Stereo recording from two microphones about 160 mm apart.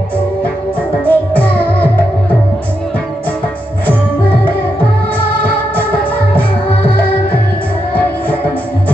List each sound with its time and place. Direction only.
1.0 s music: 10° left (ahead or behind)